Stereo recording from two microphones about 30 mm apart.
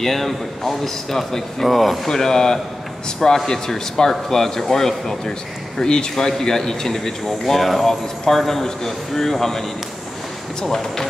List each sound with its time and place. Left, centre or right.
0.0 s speech: centre
1.7 s speech: centre
2.0 s speech: centre
5.9 s speech: left
6.1 s speech: centre